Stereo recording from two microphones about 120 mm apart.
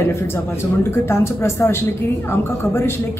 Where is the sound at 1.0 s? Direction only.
25° left (ahead or behind).